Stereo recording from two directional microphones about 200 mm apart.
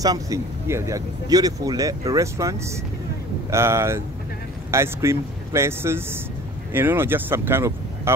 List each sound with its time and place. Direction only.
0.0 s speech: 15° right (ahead or behind)